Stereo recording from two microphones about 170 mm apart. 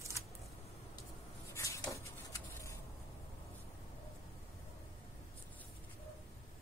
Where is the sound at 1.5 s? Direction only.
20° left (ahead or behind).